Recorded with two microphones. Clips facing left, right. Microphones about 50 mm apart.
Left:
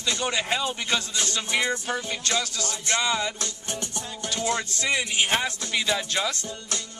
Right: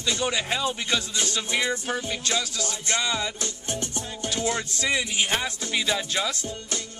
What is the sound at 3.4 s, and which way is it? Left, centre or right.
Music, left.